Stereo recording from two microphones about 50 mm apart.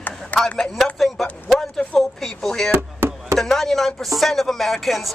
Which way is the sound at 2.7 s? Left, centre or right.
Right.